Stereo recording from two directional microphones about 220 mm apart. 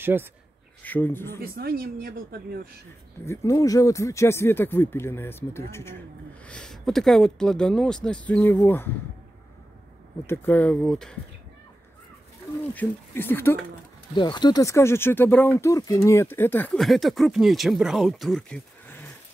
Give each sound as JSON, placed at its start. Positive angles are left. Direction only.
{"t": 0.0, "sound": "speech", "side_deg": -10}
{"t": 0.8, "sound": "speech", "side_deg": 10}
{"t": 1.4, "sound": "a woman's voice", "side_deg": -45}
{"t": 3.3, "sound": "speech", "side_deg": 15}
{"t": 10.2, "sound": "speech", "side_deg": 10}
{"t": 12.7, "sound": "speech", "side_deg": 10}